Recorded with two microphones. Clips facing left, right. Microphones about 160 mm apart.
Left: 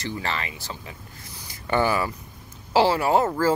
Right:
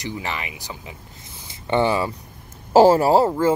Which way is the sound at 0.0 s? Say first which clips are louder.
Even; 15° right (ahead or behind).